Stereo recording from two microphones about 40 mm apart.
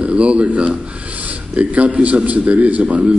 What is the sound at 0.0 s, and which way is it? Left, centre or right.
A man's voice, right.